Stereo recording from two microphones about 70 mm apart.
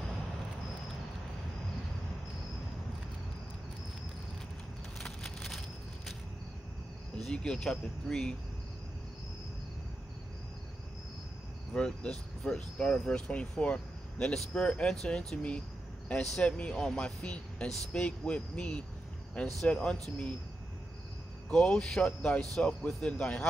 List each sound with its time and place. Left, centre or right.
4.9 s a sound: centre
7.2 s speech: centre
11.7 s speech: centre
21.5 s speech: centre